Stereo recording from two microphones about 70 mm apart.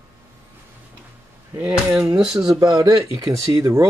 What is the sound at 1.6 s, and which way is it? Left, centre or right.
Speech, centre.